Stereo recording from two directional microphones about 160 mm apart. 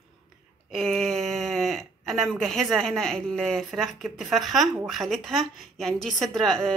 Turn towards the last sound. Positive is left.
turn(degrees=0)  # may be behind; listen again after turning